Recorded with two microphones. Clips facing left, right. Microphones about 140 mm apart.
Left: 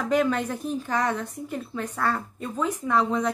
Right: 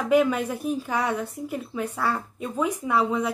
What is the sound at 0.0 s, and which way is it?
A woman's voice, 10° right (ahead or behind).